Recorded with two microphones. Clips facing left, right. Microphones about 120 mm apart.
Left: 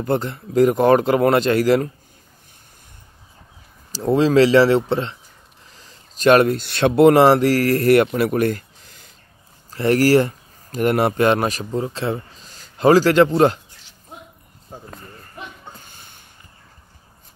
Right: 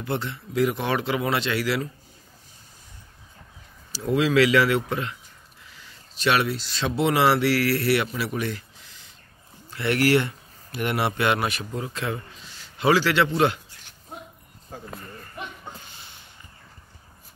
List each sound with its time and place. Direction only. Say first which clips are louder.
0.0 s speech: left 7 dB; 45° left (ahead or behind)
3.9 s speech: left 6 dB; 35° left (ahead or behind)
9.7 s speech: left 6 dB; 40° left (ahead or behind)
15.8 s a sound: even; 50° left (ahead or behind)